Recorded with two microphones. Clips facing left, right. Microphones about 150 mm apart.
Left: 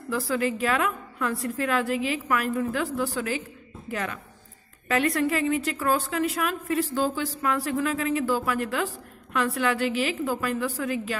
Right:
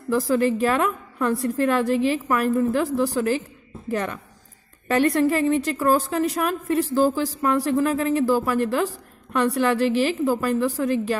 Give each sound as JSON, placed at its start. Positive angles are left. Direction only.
{"t": 0.1, "sound": "a woman's voice", "side_deg": -40}
{"t": 4.8, "sound": "a woman's voice", "side_deg": -40}